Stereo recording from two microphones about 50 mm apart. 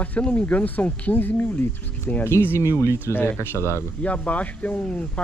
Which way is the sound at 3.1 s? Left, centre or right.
Left.